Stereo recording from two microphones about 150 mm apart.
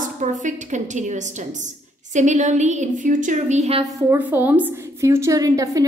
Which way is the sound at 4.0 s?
15° right (ahead or behind).